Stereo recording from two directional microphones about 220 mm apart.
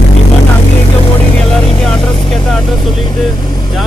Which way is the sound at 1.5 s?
5° left (ahead or behind).